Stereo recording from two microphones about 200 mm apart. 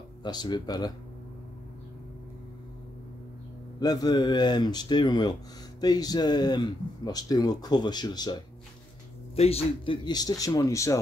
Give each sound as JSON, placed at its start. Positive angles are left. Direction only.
{"t": 0.2, "sound": "speech", "side_deg": 20}
{"t": 3.8, "sound": "speech", "side_deg": 20}